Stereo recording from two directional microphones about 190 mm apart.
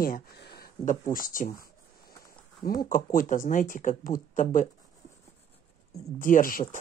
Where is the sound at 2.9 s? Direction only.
45° left (ahead or behind).